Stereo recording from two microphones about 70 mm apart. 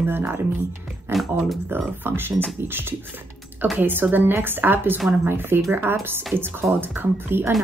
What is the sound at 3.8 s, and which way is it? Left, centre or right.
A woman's voice, right.